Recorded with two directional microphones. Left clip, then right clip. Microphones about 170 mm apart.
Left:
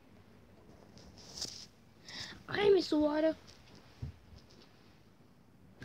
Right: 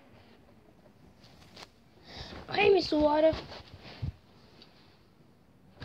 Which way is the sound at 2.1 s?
35° left (ahead or behind).